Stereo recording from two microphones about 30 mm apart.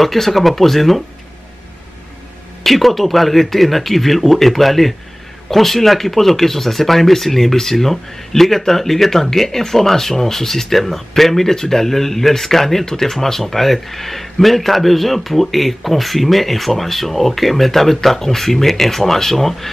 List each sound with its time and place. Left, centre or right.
0.0 s speech: centre
2.6 s speech: centre